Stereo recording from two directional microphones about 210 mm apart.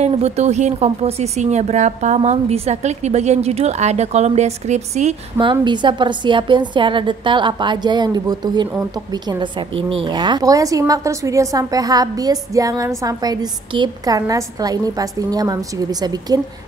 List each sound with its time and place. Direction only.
0.0 s a woman's voice: 30° right (ahead or behind)